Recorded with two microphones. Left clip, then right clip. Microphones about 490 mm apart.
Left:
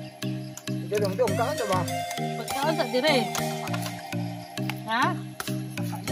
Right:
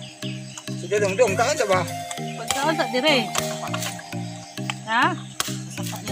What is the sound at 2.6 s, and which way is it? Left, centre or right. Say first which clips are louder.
Music: right 3 dB; left.